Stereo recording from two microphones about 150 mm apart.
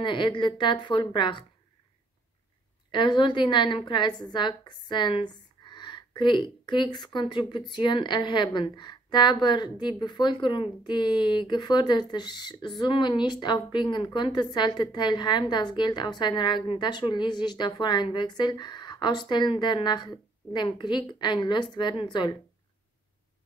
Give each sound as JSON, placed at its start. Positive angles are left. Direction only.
{"t": 0.0, "sound": "a woman's voice", "side_deg": 35}
{"t": 2.9, "sound": "a woman's voice", "side_deg": 30}